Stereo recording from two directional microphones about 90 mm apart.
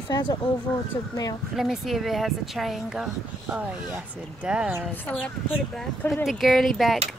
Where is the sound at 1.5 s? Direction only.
5° right (ahead or behind).